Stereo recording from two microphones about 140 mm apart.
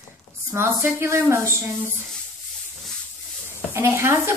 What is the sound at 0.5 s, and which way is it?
Speech, 15° right (ahead or behind).